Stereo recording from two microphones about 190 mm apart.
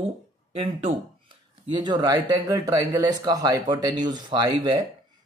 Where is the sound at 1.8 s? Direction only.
20° right (ahead or behind).